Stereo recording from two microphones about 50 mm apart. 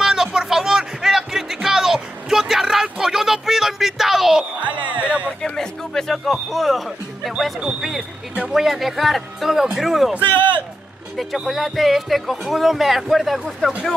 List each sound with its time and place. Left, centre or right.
0.0 s music: centre
4.6 s music: right
5.4 s music: centre
7.6 s speech: centre
11.4 s speech: centre
13.6 s speech: centre